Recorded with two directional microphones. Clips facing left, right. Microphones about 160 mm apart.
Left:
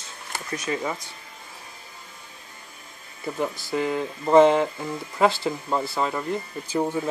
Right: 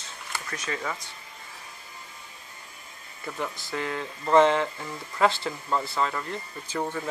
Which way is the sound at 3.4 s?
5° left (ahead or behind).